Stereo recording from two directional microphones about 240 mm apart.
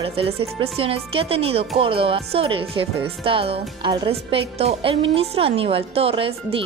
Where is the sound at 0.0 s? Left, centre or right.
Right.